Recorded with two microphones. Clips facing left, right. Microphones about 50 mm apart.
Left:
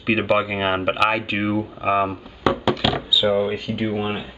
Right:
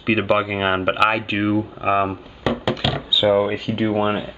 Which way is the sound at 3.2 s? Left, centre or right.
Centre.